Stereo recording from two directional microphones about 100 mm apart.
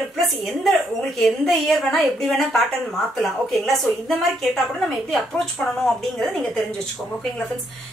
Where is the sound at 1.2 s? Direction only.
5° left (ahead or behind).